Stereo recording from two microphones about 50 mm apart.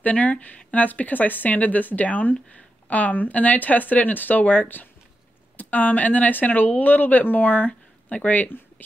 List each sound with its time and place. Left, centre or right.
0.0 s speech: left